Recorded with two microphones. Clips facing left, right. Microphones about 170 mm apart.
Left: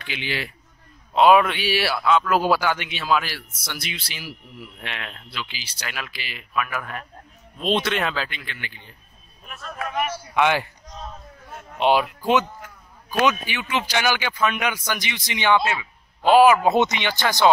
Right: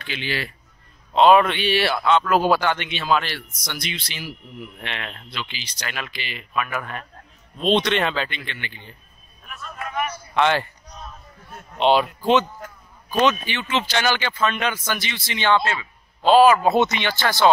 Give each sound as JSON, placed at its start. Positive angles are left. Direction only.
{"t": 0.0, "sound": "speech", "side_deg": 15}
{"t": 9.8, "sound": "a sound", "side_deg": 90}
{"t": 10.3, "sound": "speech", "side_deg": 10}
{"t": 11.8, "sound": "speech", "side_deg": 10}